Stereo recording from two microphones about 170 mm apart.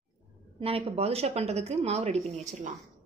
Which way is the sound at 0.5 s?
35° right (ahead or behind).